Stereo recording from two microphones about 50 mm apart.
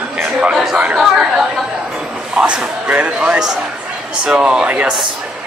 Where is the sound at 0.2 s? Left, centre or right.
Right.